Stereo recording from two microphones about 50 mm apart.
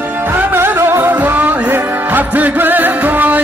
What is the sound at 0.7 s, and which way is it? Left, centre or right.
Music, right.